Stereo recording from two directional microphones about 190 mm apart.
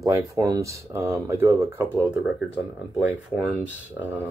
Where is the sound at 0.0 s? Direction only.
15° right (ahead or behind).